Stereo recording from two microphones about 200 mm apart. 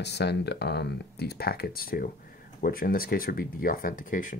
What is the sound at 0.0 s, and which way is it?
Speech, 55° left (ahead or behind).